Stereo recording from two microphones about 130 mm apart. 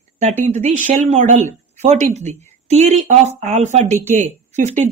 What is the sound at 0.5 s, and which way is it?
A woman's voice, 65° right (ahead or behind).